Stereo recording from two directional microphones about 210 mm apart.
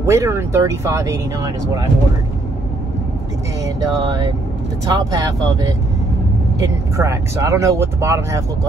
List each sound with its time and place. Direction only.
0.0 s speech: 15° right (ahead or behind)
3.6 s speech: 15° right (ahead or behind)